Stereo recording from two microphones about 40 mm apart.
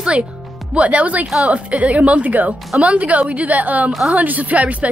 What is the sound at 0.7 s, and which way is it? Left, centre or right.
Speech, right.